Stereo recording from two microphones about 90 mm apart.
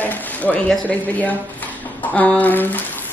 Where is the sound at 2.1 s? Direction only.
15° left (ahead or behind).